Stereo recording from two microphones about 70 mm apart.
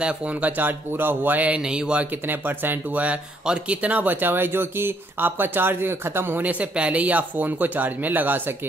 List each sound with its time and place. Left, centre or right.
0.0 s speech: centre
2.0 s speech: right